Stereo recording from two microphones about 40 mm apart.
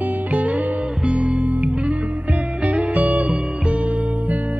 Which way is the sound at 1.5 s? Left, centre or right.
Right.